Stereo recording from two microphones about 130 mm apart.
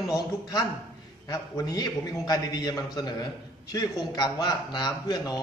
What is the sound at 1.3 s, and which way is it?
A man's voice, 30° left (ahead or behind).